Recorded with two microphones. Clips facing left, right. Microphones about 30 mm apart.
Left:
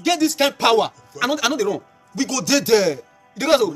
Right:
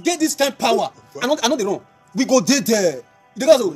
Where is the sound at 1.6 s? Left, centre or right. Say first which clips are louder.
Even; left.